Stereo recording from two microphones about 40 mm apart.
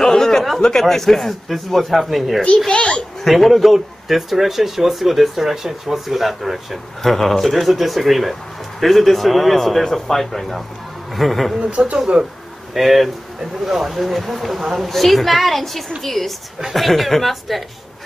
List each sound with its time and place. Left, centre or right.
0.0 s a sound: centre
0.6 s speech: centre
2.7 s a child's voice: left
3.3 s speech: centre
11.6 s speech: right
12.7 s speech: centre